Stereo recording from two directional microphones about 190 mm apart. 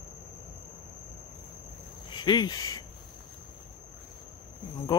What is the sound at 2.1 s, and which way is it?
Speech, 25° left (ahead or behind).